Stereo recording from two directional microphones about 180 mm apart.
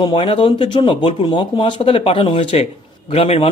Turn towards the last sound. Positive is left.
turn(degrees=35)  # may be behind; listen again after turning